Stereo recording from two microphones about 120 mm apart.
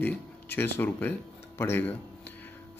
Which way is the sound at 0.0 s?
15° left (ahead or behind).